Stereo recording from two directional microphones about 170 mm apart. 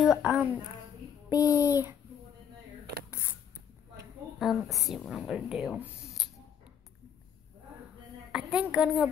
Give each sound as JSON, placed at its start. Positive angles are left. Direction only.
{"t": 0.0, "sound": "a woman's voice", "side_deg": -5}
{"t": 1.4, "sound": "a child's voice", "side_deg": 20}
{"t": 1.7, "sound": "speech", "side_deg": -10}
{"t": 4.4, "sound": "speech", "side_deg": 0}
{"t": 8.3, "sound": "a woman's voice", "side_deg": -5}